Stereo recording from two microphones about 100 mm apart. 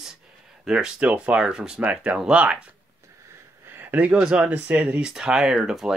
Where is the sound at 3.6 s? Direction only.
20° right (ahead or behind).